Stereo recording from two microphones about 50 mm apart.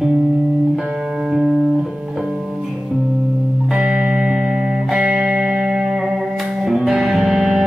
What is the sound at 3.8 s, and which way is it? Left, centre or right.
Music, centre.